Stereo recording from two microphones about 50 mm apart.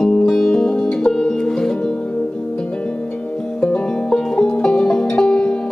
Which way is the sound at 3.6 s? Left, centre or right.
Centre.